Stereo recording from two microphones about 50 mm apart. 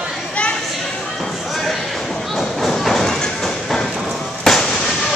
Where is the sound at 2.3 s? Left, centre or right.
Centre.